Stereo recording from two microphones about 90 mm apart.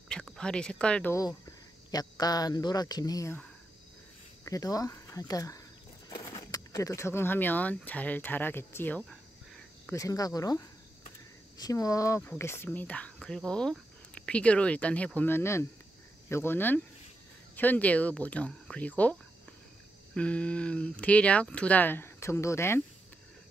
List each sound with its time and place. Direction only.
0.1 s speech: 10° left (ahead or behind)
1.9 s speech: 45° left (ahead or behind)
4.5 s speech: 40° left (ahead or behind); by 9.0 s 25° left (ahead or behind)
9.9 s speech: 40° left (ahead or behind)
12.2 s speech: 25° left (ahead or behind)
15.1 s speech: 25° left (ahead or behind)
20.2 s speech: 15° left (ahead or behind); by 22.8 s 30° left (ahead or behind)